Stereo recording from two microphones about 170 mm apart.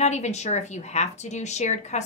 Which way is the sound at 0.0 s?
40° left (ahead or behind).